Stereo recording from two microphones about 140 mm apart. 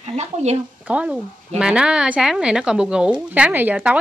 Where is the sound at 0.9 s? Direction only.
10° right (ahead or behind).